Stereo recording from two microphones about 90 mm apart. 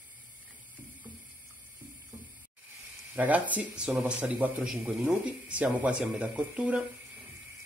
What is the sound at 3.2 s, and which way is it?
A man's voice, 20° right (ahead or behind).